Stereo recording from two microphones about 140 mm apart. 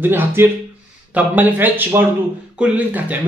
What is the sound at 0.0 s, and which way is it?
Speech, 15° right (ahead or behind).